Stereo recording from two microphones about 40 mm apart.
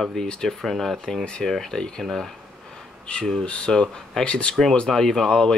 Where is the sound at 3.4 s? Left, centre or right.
Left.